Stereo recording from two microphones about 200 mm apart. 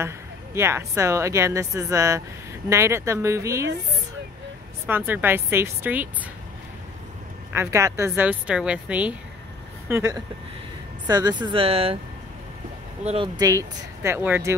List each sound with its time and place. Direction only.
0.6 s speech: 15° right (ahead or behind)
4.8 s speech: 10° right (ahead or behind)
7.5 s speech: 15° right (ahead or behind); by 12.0 s 30° right (ahead or behind)
13.0 s speech: 30° right (ahead or behind)
13.4 s speech: 15° right (ahead or behind)